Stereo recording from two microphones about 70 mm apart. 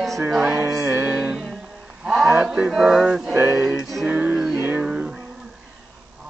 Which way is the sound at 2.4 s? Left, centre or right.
Centre.